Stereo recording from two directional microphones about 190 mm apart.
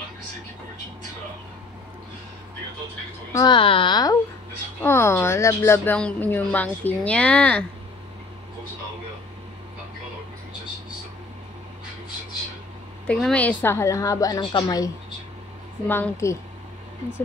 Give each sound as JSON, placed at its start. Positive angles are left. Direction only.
{"t": 3.3, "sound": "speech", "side_deg": 25}
{"t": 13.0, "sound": "speech", "side_deg": 5}
{"t": 15.9, "sound": "speech", "side_deg": 15}